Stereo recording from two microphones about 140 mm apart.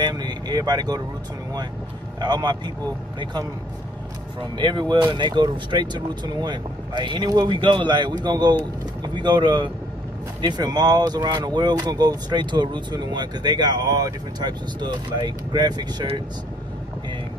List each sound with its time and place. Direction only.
0.1 s speech: 30° right (ahead or behind)
2.1 s speech: 30° right (ahead or behind)
4.4 s speech: 35° right (ahead or behind)